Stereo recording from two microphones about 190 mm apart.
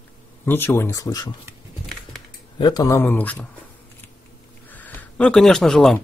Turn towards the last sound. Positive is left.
turn(degrees=0)  # may be behind; listen again after turning